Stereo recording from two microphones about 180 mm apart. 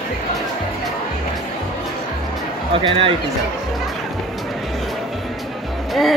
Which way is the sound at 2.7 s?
30° right (ahead or behind).